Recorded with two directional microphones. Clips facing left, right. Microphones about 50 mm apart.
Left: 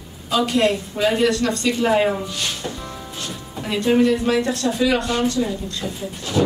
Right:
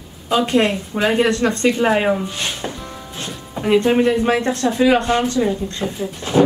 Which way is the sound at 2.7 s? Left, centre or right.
Centre.